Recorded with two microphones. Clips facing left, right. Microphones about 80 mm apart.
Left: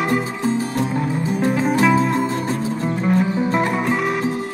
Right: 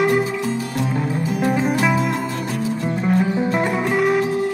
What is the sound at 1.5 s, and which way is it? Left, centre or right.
Music, centre.